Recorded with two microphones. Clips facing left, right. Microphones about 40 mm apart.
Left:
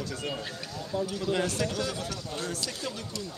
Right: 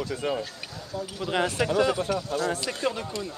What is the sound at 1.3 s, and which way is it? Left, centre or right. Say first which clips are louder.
Speech: right 6 dB; right.